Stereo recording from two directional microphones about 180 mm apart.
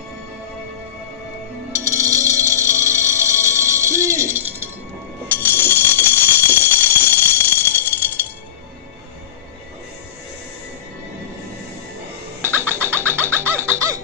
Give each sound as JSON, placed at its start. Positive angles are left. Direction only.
{"t": 1.7, "sound": "music", "side_deg": -15}
{"t": 5.3, "sound": "alarm", "side_deg": 10}
{"t": 7.9, "sound": "music", "side_deg": 15}
{"t": 12.4, "sound": "music", "side_deg": -10}